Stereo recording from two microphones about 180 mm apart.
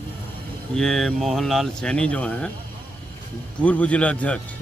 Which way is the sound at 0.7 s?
5° left (ahead or behind).